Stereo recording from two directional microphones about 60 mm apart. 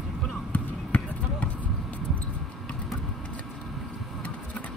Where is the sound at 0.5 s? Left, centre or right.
Left.